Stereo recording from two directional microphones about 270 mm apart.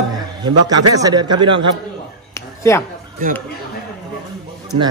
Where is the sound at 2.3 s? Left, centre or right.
Centre.